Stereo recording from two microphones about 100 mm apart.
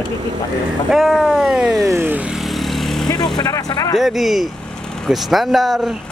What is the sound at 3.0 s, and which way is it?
Speech, 45° left (ahead or behind).